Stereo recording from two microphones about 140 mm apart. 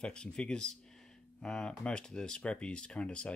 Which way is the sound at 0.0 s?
5° left (ahead or behind).